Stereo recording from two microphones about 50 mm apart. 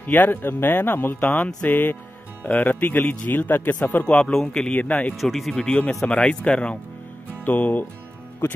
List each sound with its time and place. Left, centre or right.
0.0 s speech: left
4.0 s speech: left
4.3 s a man's voice: centre
4.6 s speech: left
5.1 s speech: centre
5.6 s speech: centre
7.4 s speech: left